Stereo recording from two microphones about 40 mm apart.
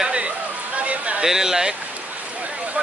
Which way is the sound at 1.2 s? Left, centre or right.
Centre.